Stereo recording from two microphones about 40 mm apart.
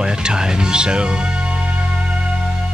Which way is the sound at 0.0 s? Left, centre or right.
Centre.